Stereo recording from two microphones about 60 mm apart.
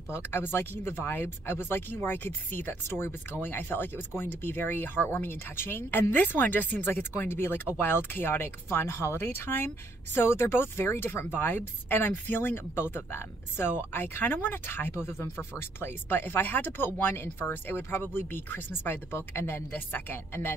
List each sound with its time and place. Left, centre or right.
0.1 s speech: left